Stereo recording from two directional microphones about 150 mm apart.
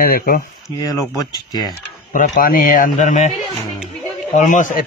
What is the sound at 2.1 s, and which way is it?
A man's voice, 60° left (ahead or behind).